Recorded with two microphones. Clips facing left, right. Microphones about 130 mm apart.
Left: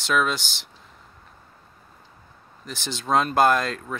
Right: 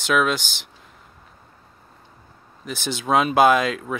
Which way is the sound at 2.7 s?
5° right (ahead or behind).